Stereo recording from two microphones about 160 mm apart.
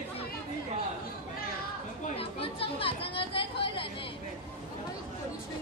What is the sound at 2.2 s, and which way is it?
Chatter, 35° left (ahead or behind).